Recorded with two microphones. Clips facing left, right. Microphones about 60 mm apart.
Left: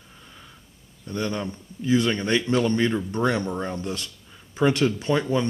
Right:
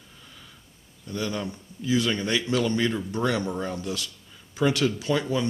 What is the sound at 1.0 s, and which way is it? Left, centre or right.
Speech, left.